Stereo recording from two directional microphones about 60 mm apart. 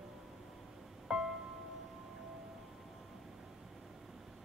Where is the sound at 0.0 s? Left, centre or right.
Centre.